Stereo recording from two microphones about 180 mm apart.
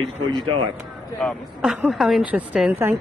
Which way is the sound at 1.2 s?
Centre (ahead or behind).